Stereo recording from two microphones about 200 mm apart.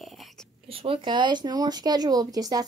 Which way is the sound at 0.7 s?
30° right (ahead or behind).